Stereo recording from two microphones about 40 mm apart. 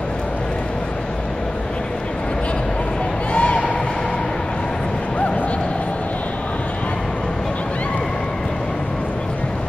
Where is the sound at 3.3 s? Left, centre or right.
Left.